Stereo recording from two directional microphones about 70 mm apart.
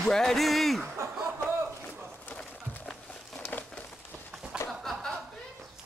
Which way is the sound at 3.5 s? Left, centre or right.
Left.